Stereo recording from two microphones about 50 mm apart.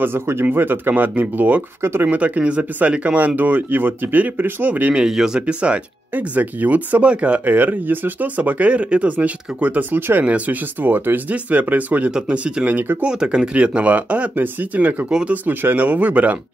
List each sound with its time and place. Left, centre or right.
0.0 s speech: right
1.8 s speech: right
2.0 s speech: right
4.9 s speech: centre
5.5 s speech: right
6.1 s speech: right
10.2 s speech: right
12.1 s speech: centre
12.6 s speech: right
13.0 s speech: centre; by 15.0 s right
15.0 s speech: centre
15.4 s speech: right